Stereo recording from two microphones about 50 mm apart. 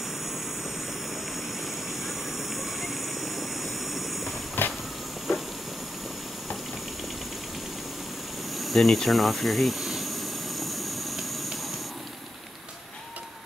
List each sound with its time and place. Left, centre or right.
2.0 s vehicle: centre
4.6 s train: left
8.5 s a sound: centre